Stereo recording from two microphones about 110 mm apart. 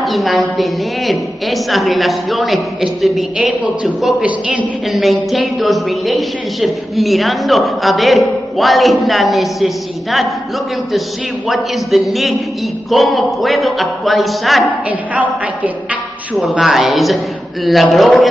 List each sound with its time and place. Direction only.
0.0 s a woman's voice: centre (ahead or behind)
4.9 s a woman's voice: centre (ahead or behind)
11.4 s a woman's voice: centre (ahead or behind)
14.9 s a woman's voice: 15° right (ahead or behind)
16.5 s a woman's voice: centre (ahead or behind)